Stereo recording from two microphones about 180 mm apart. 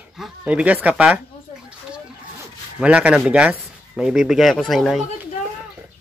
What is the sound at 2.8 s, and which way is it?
Speech, 5° right (ahead or behind).